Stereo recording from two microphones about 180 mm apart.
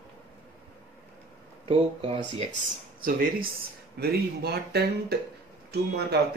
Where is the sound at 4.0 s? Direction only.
65° right (ahead or behind).